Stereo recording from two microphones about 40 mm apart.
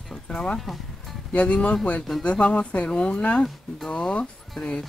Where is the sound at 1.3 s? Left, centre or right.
Left.